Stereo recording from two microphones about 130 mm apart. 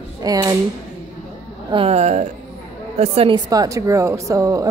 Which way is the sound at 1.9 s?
65° right (ahead or behind).